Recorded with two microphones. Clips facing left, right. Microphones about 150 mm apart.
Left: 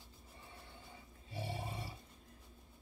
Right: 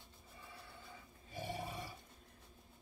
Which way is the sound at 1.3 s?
30° left (ahead or behind).